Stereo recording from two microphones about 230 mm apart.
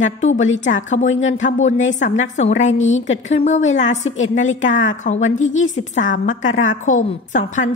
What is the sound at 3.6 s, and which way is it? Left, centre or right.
A woman's voice, left.